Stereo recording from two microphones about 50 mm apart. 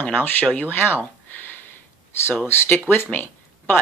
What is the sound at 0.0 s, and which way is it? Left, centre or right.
Speech, left.